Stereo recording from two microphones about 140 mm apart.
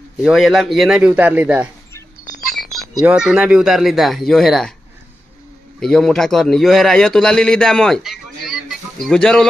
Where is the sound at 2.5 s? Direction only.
Centre (ahead or behind).